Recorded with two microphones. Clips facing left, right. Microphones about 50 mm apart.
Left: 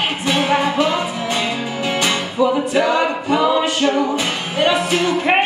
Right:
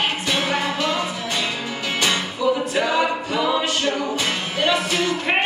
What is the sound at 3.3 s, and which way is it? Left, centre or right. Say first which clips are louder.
Music: left 5 dB; left.